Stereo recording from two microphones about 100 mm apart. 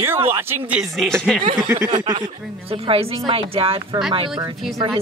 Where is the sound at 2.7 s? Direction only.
75° right (ahead or behind).